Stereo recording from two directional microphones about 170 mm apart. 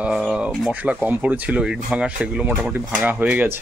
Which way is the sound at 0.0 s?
5° right (ahead or behind).